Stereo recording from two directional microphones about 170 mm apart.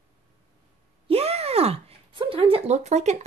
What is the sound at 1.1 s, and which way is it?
Speech, 35° right (ahead or behind).